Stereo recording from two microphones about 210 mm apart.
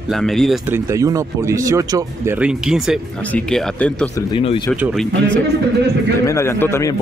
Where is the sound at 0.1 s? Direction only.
Centre (ahead or behind).